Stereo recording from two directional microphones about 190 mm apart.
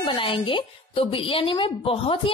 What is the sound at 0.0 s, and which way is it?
A woman's voice, 25° left (ahead or behind).